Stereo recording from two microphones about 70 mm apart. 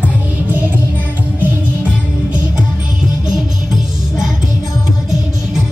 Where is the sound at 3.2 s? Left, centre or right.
Centre.